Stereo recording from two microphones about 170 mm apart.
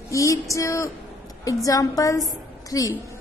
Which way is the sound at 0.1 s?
20° left (ahead or behind).